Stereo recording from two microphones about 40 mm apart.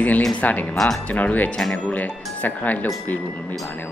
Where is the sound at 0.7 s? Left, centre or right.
Centre.